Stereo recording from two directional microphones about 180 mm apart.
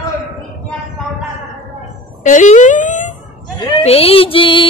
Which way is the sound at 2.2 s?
45° left (ahead or behind).